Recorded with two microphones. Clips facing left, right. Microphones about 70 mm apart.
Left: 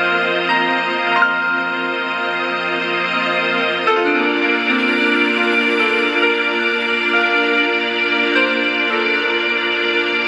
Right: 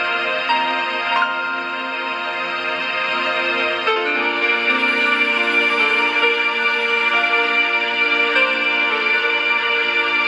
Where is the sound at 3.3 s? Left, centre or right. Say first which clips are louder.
Left 2 dB; left.